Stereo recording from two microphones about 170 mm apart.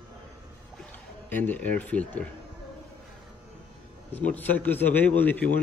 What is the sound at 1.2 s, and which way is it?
A man's voice, 10° left (ahead or behind).